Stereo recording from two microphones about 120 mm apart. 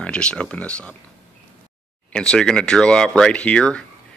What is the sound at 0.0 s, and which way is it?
Speech, 10° left (ahead or behind).